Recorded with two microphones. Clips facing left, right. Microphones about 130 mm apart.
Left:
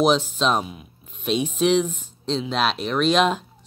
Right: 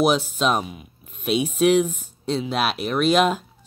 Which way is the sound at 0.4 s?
5° right (ahead or behind).